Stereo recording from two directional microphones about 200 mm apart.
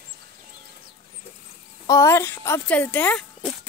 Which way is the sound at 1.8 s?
15° left (ahead or behind).